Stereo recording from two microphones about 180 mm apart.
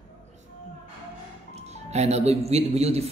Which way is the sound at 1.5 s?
35° right (ahead or behind).